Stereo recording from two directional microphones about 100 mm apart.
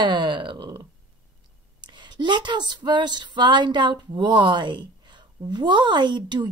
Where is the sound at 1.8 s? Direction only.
50° right (ahead or behind).